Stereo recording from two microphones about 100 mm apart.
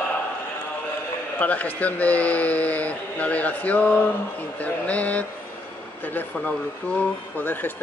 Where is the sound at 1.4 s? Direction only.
15° left (ahead or behind).